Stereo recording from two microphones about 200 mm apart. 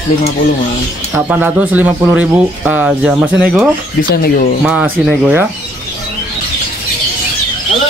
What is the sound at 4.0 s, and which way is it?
Speech, 50° left (ahead or behind).